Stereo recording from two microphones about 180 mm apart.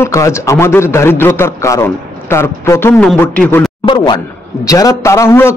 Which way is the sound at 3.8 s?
25° left (ahead or behind).